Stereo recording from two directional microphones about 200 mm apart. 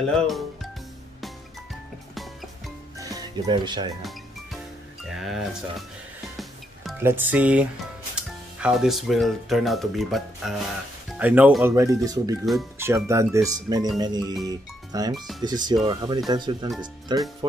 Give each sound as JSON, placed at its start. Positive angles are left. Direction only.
{"t": 0.0, "sound": "speech", "side_deg": 0}
{"t": 3.0, "sound": "music", "side_deg": -20}
{"t": 5.0, "sound": "speech", "side_deg": 0}
{"t": 6.3, "sound": "music", "side_deg": 0}
{"t": 7.0, "sound": "speech", "side_deg": -10}